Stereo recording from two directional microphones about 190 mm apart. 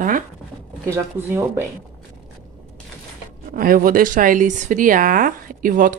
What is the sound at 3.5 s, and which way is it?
Speech, 50° right (ahead or behind).